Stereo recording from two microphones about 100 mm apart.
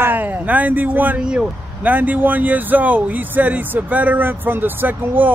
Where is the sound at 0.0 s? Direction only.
20° right (ahead or behind).